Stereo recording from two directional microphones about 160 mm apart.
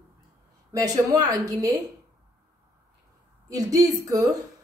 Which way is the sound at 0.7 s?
20° right (ahead or behind).